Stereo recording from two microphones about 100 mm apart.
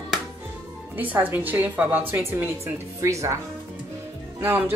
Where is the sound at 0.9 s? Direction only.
15° right (ahead or behind).